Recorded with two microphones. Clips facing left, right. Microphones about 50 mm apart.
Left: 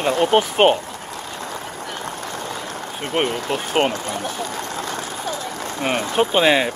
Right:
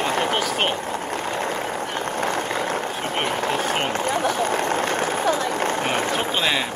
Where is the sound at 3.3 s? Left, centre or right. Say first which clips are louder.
Right 2 dB; right.